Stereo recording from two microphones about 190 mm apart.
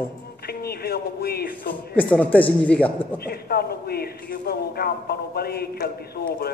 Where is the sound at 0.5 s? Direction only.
55° left (ahead or behind).